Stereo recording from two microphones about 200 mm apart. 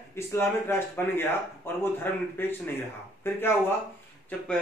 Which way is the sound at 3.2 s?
10° left (ahead or behind).